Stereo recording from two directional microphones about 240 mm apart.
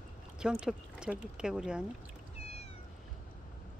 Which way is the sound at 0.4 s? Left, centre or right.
Centre.